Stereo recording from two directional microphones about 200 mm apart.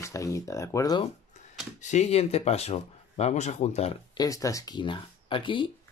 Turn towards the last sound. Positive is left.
turn(degrees=25)  # may be behind; listen again after turning